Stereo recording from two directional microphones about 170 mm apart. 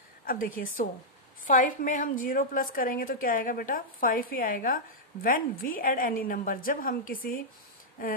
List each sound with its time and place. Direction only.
0.2 s a woman's voice: 60° left (ahead or behind)